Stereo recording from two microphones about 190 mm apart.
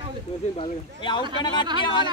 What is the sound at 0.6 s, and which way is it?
Speech, 25° left (ahead or behind).